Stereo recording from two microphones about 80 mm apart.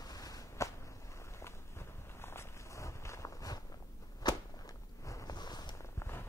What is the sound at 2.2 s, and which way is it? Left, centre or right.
Walk, left.